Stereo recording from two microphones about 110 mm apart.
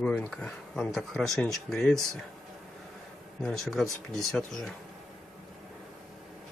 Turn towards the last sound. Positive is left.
turn(degrees=5)  # may be behind; listen again after turning